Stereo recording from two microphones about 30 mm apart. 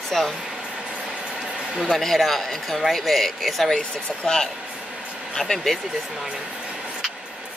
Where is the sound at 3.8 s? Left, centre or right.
Left.